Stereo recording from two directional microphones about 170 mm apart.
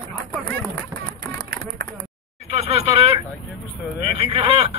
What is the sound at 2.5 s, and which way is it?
Speech, 35° right (ahead or behind).